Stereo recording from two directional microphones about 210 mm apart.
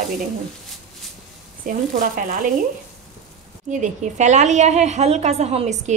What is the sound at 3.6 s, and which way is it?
Speech, 35° right (ahead or behind).